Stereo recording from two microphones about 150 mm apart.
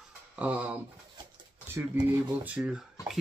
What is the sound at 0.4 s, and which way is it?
Speech, 10° right (ahead or behind).